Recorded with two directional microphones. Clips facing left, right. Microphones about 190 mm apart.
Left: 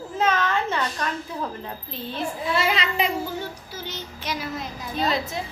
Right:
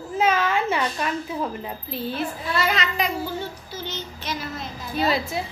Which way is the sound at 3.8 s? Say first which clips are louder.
Even; 10° left (ahead or behind).